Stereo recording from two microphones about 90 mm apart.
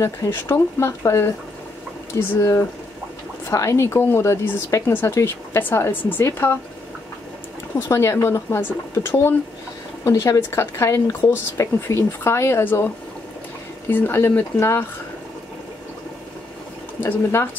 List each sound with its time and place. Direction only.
0.0 s speech: 30° left (ahead or behind)
7.9 s speech: 30° left (ahead or behind)
17.0 s speech: 30° left (ahead or behind)